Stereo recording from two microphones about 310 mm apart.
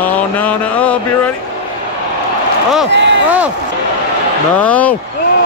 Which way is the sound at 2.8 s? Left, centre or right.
Right.